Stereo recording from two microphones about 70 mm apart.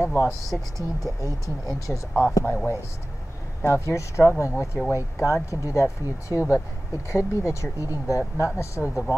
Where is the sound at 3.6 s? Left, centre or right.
Left.